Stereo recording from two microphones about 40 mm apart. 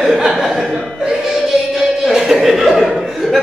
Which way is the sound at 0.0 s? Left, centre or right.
Centre.